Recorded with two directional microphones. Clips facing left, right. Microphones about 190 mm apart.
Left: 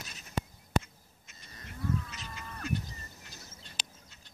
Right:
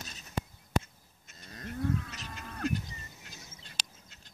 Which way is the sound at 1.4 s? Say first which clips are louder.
Right 6 dB; 50° right (ahead or behind).